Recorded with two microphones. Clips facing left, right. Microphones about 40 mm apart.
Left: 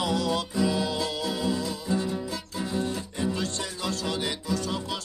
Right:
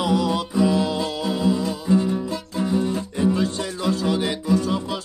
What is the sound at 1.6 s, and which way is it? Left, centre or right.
Music, right.